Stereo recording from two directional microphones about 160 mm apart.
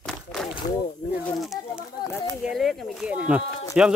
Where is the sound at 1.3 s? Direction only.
Centre (ahead or behind).